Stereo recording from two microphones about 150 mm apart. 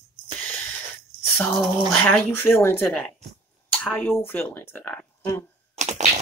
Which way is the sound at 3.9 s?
15° left (ahead or behind).